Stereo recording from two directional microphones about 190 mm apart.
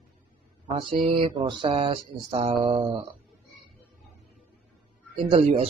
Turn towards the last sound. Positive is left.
turn(degrees=-30)  # may be behind; listen again after turning